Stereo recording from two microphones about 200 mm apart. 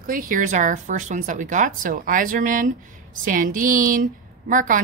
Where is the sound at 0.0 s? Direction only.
45° right (ahead or behind).